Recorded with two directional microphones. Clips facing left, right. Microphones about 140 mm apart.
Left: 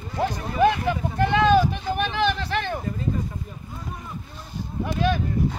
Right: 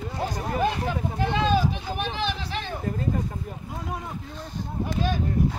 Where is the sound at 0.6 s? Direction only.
65° left (ahead or behind).